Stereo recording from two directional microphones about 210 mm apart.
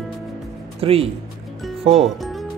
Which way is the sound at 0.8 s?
25° right (ahead or behind).